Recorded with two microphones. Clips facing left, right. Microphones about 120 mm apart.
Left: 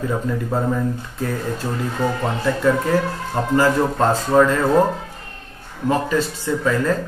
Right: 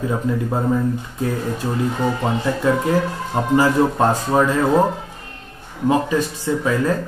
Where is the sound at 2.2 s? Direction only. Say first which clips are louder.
Left 1 dB; 15° right (ahead or behind).